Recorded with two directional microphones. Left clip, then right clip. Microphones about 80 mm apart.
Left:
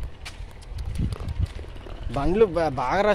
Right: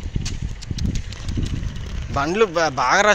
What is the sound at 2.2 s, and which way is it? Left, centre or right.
Speech, left.